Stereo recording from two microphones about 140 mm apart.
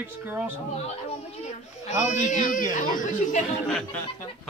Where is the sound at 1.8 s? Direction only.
55° left (ahead or behind).